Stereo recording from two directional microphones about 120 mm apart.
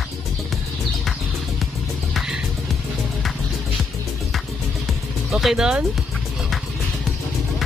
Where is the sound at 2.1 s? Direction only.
5° right (ahead or behind).